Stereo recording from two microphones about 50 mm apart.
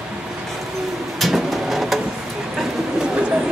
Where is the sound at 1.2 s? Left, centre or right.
Centre.